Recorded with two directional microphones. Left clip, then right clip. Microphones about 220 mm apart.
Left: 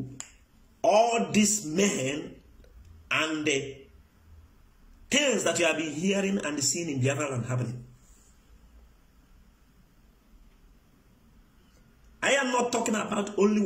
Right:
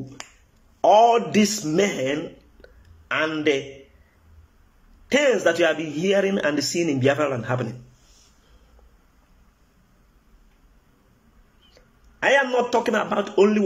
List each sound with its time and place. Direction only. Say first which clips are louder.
0.7 s a man's voice: right 7 dB; 10° left (ahead or behind)
2.6 s a sound: right 9 dB; 10° left (ahead or behind)
3.3 s a man's voice: right 6 dB; 10° left (ahead or behind)
5.1 s a man's voice: right 7 dB; 10° left (ahead or behind)
12.2 s a man's voice: right 6 dB; 10° left (ahead or behind)